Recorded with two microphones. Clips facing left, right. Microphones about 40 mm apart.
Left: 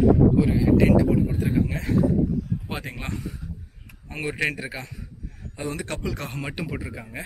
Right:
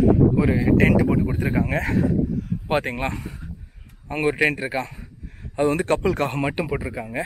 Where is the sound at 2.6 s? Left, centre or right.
Right.